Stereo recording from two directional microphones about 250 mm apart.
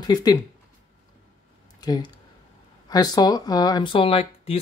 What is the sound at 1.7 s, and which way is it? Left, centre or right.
Speech, centre.